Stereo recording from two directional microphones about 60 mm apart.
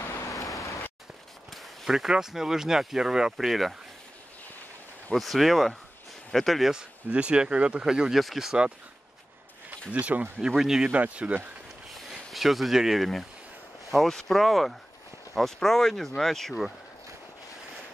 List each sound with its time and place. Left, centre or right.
0.6 s a sound: left
1.5 s speech: centre
5.1 s speech: centre
7.1 s speech: centre
9.8 s speech: right
10.4 s speech: centre
10.9 s speech: right
12.3 s speech: centre